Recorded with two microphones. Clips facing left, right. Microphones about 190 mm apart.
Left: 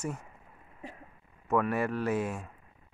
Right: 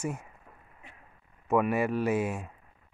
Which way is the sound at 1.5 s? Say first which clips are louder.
Right 2 dB; 10° right (ahead or behind).